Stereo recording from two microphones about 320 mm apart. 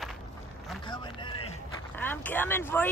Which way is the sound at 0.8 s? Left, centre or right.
Centre.